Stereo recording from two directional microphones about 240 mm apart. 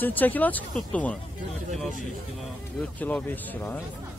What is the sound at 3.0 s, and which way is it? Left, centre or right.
Speech, centre.